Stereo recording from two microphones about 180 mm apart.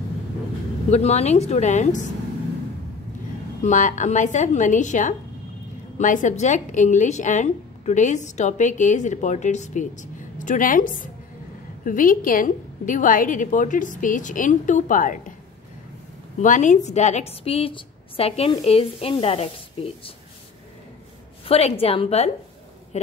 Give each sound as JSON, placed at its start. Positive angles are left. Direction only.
{"t": 0.8, "sound": "a woman's voice", "side_deg": 35}
{"t": 3.6, "sound": "a woman's voice", "side_deg": 45}
{"t": 16.3, "sound": "a woman's voice", "side_deg": 45}
{"t": 21.5, "sound": "a woman's voice", "side_deg": 35}